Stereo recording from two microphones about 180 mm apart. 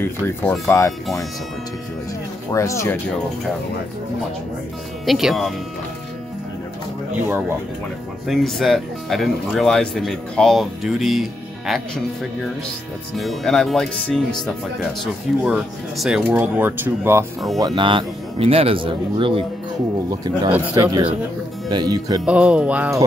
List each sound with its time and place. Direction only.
0.0 s speech: 10° left (ahead or behind)
2.5 s speech: 15° left (ahead or behind)
5.0 s speech: centre (ahead or behind)
7.2 s speech: 10° right (ahead or behind)
8.3 s speech: centre (ahead or behind)
17.6 s speech: 25° right (ahead or behind)
22.2 s speech: 5° right (ahead or behind)